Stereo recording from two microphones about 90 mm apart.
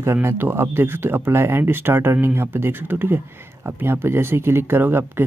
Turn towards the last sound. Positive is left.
turn(degrees=-25)  # may be behind; listen again after turning